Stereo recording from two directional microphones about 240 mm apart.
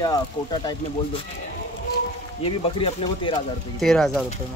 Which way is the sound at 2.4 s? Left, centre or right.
Left.